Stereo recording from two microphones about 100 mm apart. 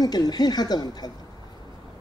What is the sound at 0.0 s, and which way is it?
Speech, 45° left (ahead or behind).